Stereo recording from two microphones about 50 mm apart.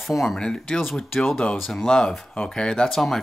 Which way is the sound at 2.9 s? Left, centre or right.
Centre.